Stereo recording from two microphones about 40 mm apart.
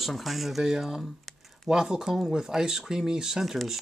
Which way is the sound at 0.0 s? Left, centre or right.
Centre.